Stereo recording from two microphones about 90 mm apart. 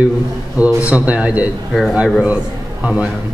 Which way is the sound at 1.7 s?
5° left (ahead or behind).